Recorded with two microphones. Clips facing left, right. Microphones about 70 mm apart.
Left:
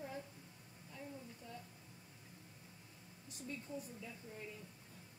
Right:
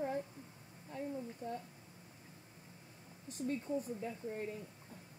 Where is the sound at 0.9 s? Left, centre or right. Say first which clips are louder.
Right 9 dB; right.